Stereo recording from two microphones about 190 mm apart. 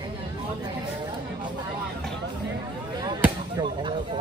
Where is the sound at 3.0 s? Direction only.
20° right (ahead or behind).